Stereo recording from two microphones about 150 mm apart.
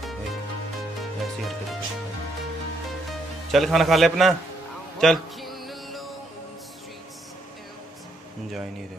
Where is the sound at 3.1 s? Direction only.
Centre (ahead or behind).